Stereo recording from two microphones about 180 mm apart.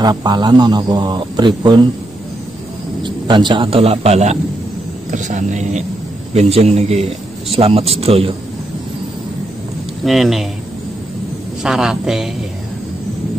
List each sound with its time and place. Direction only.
0.0 s a man's voice: 25° right (ahead or behind)
3.0 s a man's voice: 25° right (ahead or behind)
10.0 s a woman's voice: centre (ahead or behind)
11.6 s a woman's voice: 5° right (ahead or behind)